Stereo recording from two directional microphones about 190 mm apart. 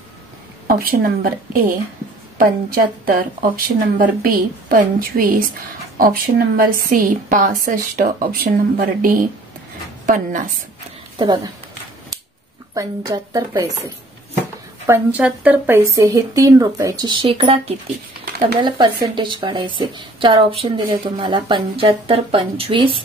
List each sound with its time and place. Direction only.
0.7 s a woman's voice: 50° right (ahead or behind)
11.1 s speech: 20° right (ahead or behind)
12.7 s speech: 20° right (ahead or behind)
14.9 s speech: 10° right (ahead or behind); by 17.7 s 30° right (ahead or behind)
18.2 s a sound: 55° right (ahead or behind)
19.1 s speech: 25° right (ahead or behind)